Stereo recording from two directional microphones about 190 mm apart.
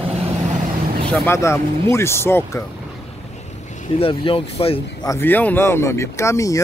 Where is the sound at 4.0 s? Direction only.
30° left (ahead or behind).